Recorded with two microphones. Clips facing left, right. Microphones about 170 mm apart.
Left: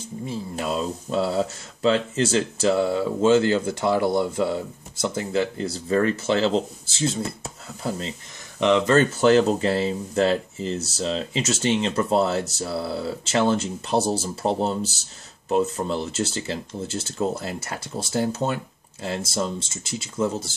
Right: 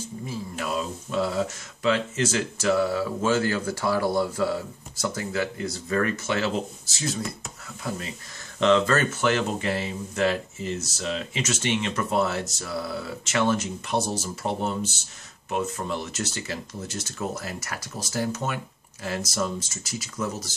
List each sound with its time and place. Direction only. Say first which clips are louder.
0.3 s speech: left 3 dB; 25° left (ahead or behind)
8.5 s speech: left 2 dB; 15° left (ahead or behind)
9.1 s speech: left 7 dB; 35° left (ahead or behind)